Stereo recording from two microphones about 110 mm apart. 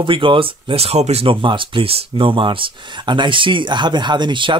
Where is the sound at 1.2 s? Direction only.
50° right (ahead or behind).